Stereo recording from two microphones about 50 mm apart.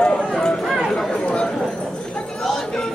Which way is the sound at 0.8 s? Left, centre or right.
Centre.